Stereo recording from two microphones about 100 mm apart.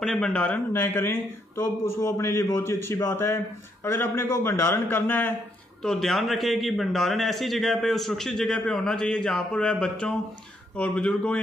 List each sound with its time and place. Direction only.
0.0 s a man's voice: 5° left (ahead or behind)
0.9 s a man's voice: 20° left (ahead or behind)
5.8 s a man's voice: 5° left (ahead or behind)